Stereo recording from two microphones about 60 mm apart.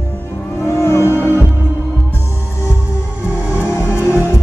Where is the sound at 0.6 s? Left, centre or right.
Left.